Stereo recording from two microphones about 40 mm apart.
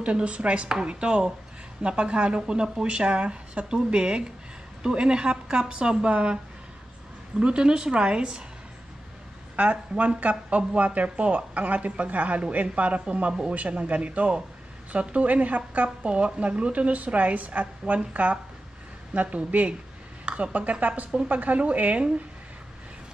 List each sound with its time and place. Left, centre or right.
0.0 s speech: right
9.6 s speech: right
16.0 s a woman's voice: right
20.8 s speech: right